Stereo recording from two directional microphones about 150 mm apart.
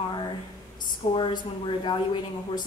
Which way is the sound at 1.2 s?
35° left (ahead or behind).